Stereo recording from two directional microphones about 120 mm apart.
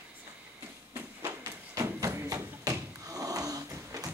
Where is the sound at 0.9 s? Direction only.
25° right (ahead or behind).